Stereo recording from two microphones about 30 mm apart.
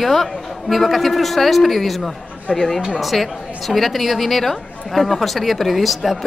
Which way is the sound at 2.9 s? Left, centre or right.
Centre.